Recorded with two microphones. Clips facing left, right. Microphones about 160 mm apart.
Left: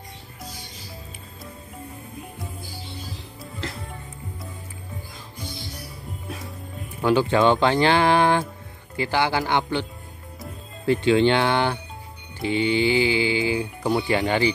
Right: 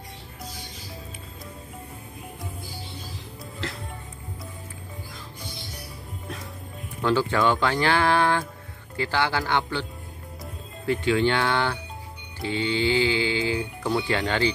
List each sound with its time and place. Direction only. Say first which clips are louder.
3.6 s music: left 1 dB; centre (ahead or behind)
7.0 s speech: left 4 dB; 15° left (ahead or behind)
10.9 s speech: left 4 dB; 25° left (ahead or behind)